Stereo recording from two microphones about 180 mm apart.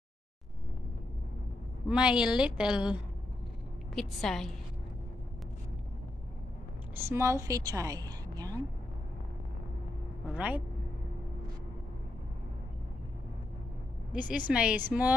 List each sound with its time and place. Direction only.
1.9 s a woman's voice: 5° right (ahead or behind)
7.1 s a woman's voice: 15° right (ahead or behind)
10.3 s a woman's voice: 10° right (ahead or behind)
14.1 s a woman's voice: 10° right (ahead or behind)